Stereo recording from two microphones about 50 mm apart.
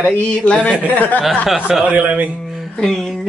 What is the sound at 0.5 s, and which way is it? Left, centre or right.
Speech, centre.